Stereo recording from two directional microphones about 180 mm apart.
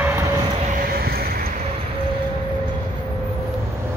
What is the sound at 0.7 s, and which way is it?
Vehicle, 55° right (ahead or behind).